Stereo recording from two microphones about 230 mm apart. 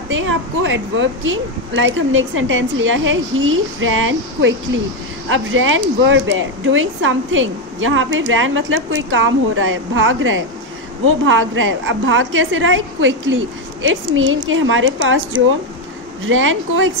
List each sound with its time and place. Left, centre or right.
0.1 s speech: right
16.3 s speech: right